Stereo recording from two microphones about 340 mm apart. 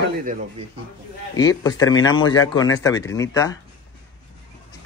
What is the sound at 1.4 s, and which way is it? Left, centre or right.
Speech, centre.